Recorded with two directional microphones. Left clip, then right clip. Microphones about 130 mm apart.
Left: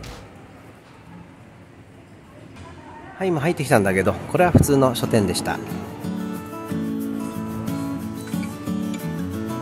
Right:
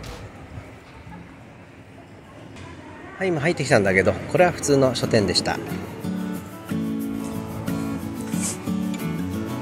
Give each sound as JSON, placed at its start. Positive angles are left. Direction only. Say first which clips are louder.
{"t": 3.5, "sound": "speech", "louder": "right 1 dB", "side_deg": 40}
{"t": 5.7, "sound": "music", "louder": "even", "side_deg": 0}